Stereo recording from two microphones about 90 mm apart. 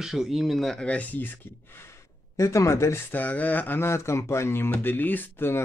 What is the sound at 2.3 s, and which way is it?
Speech, 35° left (ahead or behind).